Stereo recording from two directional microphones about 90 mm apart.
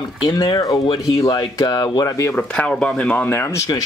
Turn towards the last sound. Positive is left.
turn(degrees=30)  # may be behind; listen again after turning